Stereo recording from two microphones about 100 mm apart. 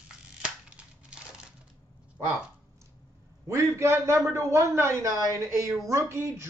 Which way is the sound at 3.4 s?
25° right (ahead or behind).